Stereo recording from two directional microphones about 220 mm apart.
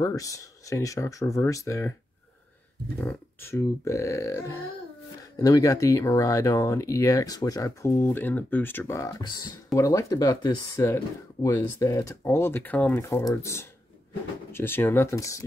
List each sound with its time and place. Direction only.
0.0 s speech: 15° left (ahead or behind)
3.0 s speech: 10° left (ahead or behind)